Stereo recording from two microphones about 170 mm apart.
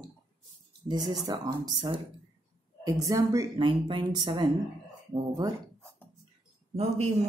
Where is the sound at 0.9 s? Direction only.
25° right (ahead or behind).